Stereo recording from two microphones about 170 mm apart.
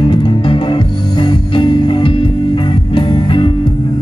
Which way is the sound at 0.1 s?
30° left (ahead or behind).